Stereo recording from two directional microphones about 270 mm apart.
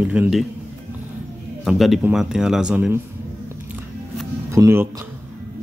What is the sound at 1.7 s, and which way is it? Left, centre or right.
Speech, centre.